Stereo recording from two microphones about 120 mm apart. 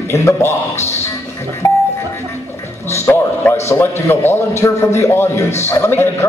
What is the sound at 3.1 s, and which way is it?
Speech, 20° left (ahead or behind).